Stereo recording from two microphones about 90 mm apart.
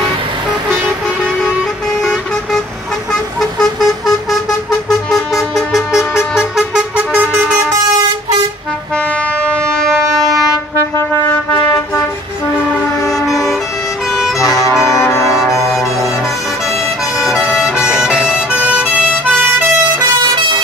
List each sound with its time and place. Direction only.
3.1 s vehicle: 5° left (ahead or behind); by 7.5 s 15° right (ahead or behind)
9.5 s a sound: 10° left (ahead or behind)
13.3 s vehicle: centre (ahead or behind)
14.9 s brass instrument: 35° left (ahead or behind)
17.2 s vehicle: 5° right (ahead or behind)
17.9 s emergency vehicle: 5° right (ahead or behind)